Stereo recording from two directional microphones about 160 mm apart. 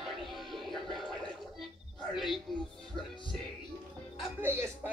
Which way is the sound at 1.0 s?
Centre (ahead or behind).